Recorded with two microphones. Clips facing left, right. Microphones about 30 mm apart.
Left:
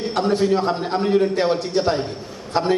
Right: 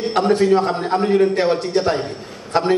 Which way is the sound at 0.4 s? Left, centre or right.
Centre.